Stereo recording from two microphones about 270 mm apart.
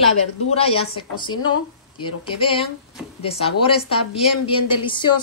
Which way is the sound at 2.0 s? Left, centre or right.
Centre.